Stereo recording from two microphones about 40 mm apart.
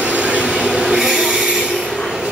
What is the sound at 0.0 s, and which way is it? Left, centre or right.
Train, right.